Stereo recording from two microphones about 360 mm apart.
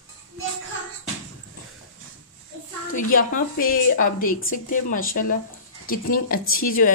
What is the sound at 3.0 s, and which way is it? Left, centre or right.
A woman's voice, left.